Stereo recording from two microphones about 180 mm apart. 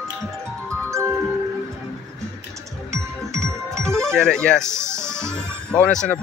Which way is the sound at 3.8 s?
5° left (ahead or behind).